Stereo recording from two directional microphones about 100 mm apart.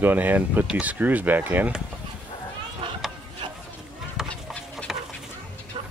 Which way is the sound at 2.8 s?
50° right (ahead or behind).